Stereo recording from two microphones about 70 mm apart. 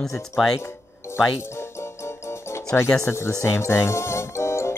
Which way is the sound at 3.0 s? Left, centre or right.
Left.